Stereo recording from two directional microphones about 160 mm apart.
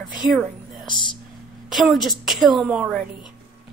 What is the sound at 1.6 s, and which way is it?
A woman's voice, centre (ahead or behind).